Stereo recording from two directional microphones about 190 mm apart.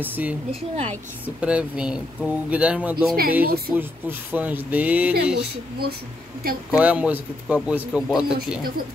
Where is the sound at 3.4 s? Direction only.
55° right (ahead or behind).